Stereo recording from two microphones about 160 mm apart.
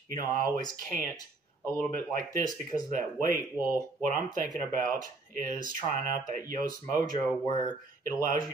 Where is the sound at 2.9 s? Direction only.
55° right (ahead or behind).